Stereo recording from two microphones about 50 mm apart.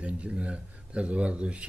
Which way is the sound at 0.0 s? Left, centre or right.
Right.